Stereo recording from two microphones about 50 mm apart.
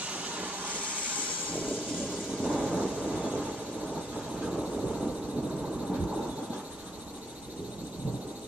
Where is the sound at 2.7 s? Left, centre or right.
Right.